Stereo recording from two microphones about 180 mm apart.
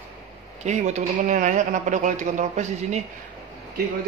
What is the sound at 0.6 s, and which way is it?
A man's voice, 40° right (ahead or behind).